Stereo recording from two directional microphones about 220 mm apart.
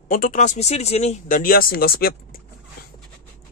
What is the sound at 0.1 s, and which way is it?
Speech, 40° left (ahead or behind).